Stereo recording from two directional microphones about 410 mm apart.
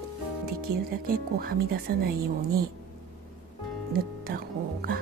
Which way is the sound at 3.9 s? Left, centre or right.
Right.